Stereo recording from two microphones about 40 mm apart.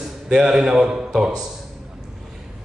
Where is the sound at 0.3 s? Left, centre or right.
Centre.